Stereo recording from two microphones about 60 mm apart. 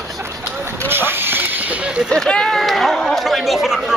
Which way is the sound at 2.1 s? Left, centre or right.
Centre.